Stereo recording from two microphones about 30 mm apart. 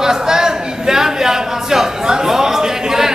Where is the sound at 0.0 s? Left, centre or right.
Centre.